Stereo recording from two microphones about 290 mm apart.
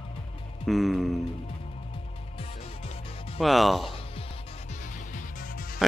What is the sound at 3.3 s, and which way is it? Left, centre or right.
Speech, centre.